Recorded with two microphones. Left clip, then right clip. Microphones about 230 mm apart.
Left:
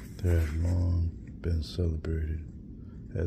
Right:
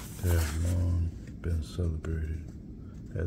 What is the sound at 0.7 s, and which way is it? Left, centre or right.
Speech, centre.